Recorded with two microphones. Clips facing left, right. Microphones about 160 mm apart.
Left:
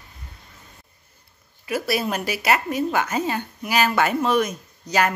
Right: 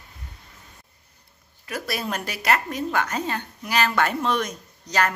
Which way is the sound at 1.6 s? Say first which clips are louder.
Left 5 dB; 5° left (ahead or behind).